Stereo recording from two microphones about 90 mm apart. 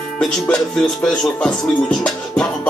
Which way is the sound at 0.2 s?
5° left (ahead or behind).